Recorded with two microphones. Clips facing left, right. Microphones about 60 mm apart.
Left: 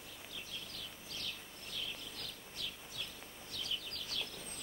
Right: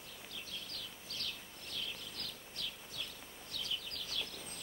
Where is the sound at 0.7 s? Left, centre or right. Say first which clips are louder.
Even; centre.